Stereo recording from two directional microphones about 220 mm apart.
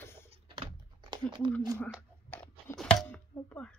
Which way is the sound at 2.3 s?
5° left (ahead or behind).